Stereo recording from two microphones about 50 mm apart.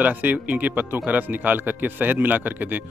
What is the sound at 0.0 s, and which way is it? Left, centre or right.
Speech, right.